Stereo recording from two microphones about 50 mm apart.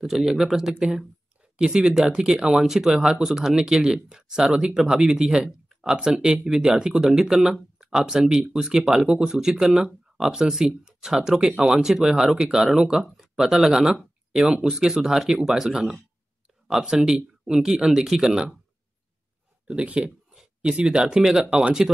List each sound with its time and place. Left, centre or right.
0.0 s speech: centre
19.7 s speech: right